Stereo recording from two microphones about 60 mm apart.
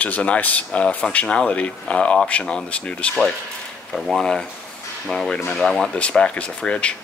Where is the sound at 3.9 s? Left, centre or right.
Centre.